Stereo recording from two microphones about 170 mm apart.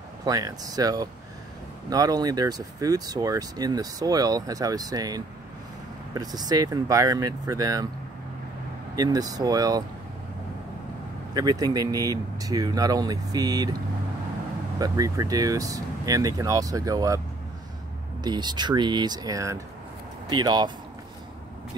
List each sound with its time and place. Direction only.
0.2 s speech: 20° right (ahead or behind)
8.9 s speech: 20° right (ahead or behind)
11.3 s speech: 20° right (ahead or behind)
14.8 s speech: 20° right (ahead or behind)
18.2 s speech: 25° right (ahead or behind)